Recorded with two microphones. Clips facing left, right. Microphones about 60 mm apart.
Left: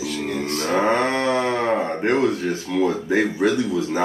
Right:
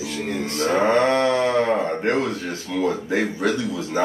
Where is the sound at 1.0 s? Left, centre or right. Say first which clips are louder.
Right 2 dB; centre.